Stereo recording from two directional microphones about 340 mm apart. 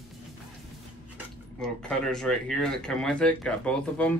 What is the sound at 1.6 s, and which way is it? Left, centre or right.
Speech, centre.